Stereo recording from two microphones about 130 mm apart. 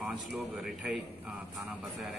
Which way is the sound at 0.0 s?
5° right (ahead or behind).